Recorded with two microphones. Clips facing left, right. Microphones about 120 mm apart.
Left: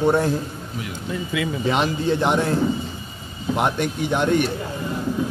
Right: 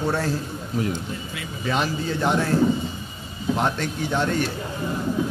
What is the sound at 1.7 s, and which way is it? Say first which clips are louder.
Speech: left 2 dB; 20° left (ahead or behind).